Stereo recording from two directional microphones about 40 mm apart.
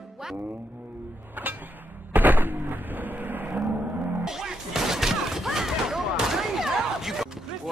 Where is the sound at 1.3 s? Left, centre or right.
Right.